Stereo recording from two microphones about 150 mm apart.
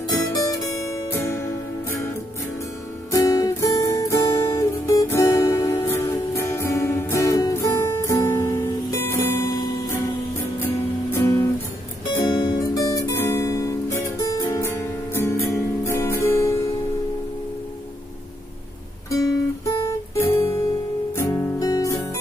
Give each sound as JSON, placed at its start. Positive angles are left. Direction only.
{"t": 0.1, "sound": "music", "side_deg": 20}
{"t": 3.1, "sound": "music", "side_deg": 20}
{"t": 10.6, "sound": "music", "side_deg": 15}
{"t": 12.3, "sound": "guitar", "side_deg": 30}
{"t": 19.0, "sound": "guitar", "side_deg": 25}
{"t": 21.2, "sound": "music", "side_deg": 25}